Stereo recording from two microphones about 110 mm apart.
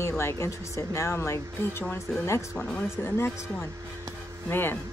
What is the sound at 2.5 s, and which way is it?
Speech, 20° left (ahead or behind).